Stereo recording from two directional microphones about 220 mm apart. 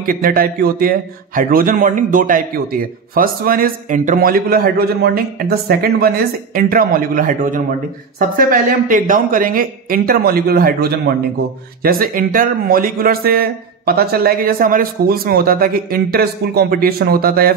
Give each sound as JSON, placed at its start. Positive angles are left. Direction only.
{"t": 0.0, "sound": "a man's voice", "side_deg": -40}